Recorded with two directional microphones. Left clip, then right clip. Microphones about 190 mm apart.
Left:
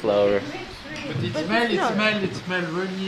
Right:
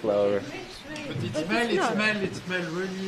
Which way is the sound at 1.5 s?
10° left (ahead or behind).